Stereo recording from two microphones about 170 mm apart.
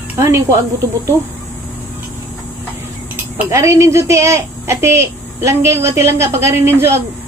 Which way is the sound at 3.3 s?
20° right (ahead or behind).